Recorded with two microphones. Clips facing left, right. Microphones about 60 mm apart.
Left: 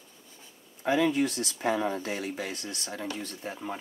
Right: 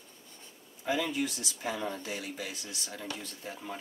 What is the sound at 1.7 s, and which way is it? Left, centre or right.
Speech, left.